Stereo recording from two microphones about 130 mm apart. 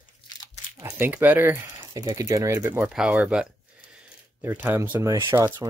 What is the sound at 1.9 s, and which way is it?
Speech, 25° right (ahead or behind).